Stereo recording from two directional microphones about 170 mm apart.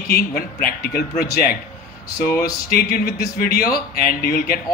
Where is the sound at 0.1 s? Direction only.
60° left (ahead or behind).